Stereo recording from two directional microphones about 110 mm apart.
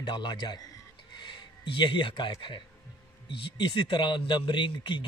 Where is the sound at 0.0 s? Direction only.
40° left (ahead or behind).